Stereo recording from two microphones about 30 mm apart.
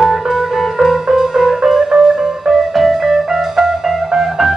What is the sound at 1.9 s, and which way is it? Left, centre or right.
Music, right.